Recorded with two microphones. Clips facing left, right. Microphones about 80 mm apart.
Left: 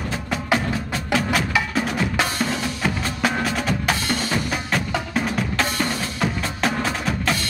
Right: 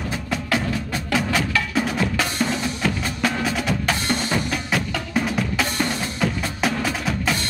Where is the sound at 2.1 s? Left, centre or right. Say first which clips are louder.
Even; centre.